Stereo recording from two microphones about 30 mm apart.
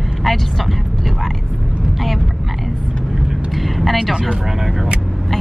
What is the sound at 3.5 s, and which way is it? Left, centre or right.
Vehicle, centre.